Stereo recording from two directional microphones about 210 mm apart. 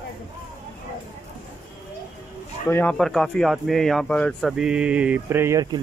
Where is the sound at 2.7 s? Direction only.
10° left (ahead or behind).